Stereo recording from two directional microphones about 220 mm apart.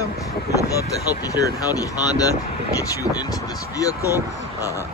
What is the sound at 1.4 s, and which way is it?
Speech, 15° left (ahead or behind).